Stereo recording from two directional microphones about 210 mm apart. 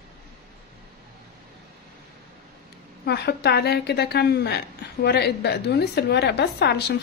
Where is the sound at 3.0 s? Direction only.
50° left (ahead or behind).